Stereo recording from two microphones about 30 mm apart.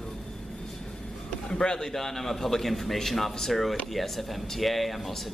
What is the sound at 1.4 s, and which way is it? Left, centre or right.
Speech, left.